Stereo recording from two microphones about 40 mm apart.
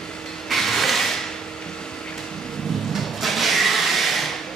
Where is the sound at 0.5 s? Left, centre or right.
Centre.